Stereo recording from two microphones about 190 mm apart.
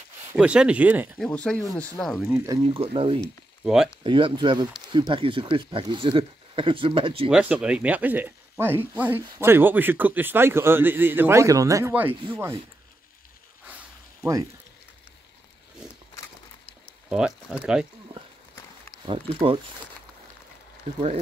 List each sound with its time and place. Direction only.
0.4 s speech: 5° right (ahead or behind)
1.1 s speech: 5° left (ahead or behind)
1.6 s speech: 15° left (ahead or behind)
2.0 s speech: centre (ahead or behind)
2.6 s speech: 30° right (ahead or behind)
3.6 s speech: centre (ahead or behind)
4.0 s speech: 25° right (ahead or behind)
7.2 s speech: 5° right (ahead or behind)
17.1 s speech: 5° right (ahead or behind)
19.0 s speech: 30° right (ahead or behind)